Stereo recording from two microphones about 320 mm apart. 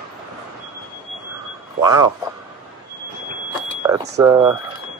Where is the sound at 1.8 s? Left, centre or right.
Centre.